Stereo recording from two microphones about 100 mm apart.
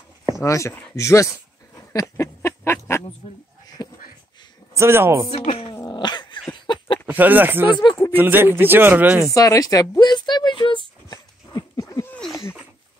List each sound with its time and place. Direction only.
0.4 s speech: 30° left (ahead or behind)
1.8 s a sound: 30° left (ahead or behind)
3.2 s speech: 55° left (ahead or behind)
3.6 s a sound: 40° left (ahead or behind)
4.7 s speech: 25° right (ahead or behind)
5.3 s speech: 80° left
5.9 s growling: 45° left (ahead or behind)
6.6 s a sound: 50° left (ahead or behind)
7.1 s speech: 15° right (ahead or behind)
7.8 s speech: 40° left (ahead or behind)
8.2 s speech: 20° right (ahead or behind)
9.3 s a sound: 35° left (ahead or behind); by 10.8 s 55° left (ahead or behind)
11.1 s dog: 35° left (ahead or behind)